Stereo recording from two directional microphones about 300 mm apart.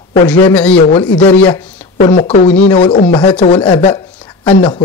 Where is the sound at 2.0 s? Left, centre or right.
Left.